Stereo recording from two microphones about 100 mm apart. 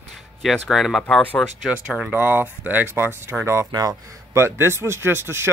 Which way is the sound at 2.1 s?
20° right (ahead or behind).